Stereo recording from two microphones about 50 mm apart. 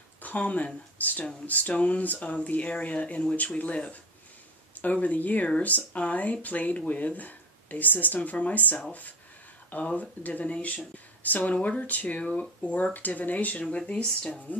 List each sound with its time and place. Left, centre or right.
0.2 s speech: left
14.0 s speech: centre